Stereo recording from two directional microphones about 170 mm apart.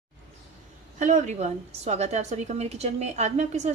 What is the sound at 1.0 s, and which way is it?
A woman's voice, 45° right (ahead or behind).